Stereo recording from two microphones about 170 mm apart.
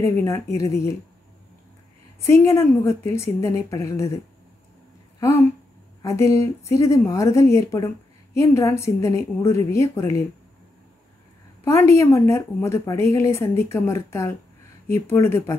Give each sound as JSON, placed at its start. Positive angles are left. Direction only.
{"t": 0.2, "sound": "speech", "side_deg": 15}
{"t": 2.2, "sound": "speech", "side_deg": 15}
{"t": 6.0, "sound": "speech", "side_deg": 20}
{"t": 11.6, "sound": "speech", "side_deg": 15}